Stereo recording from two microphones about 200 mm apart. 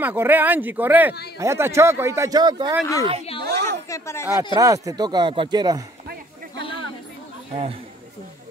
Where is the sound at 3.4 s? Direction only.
60° right (ahead or behind).